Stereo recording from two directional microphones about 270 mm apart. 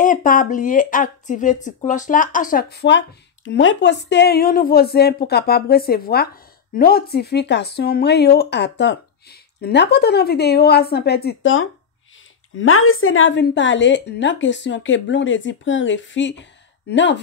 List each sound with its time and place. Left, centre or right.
0.0 s a woman's voice: left